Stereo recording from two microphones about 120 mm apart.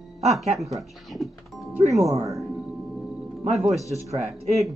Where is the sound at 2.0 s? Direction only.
25° right (ahead or behind).